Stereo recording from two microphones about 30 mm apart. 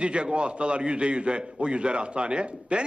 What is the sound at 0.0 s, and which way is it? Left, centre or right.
A man's voice, right.